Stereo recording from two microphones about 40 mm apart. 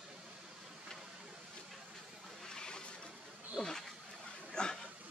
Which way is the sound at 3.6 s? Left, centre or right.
Left.